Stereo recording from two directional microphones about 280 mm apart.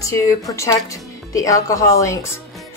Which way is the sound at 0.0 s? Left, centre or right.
Centre.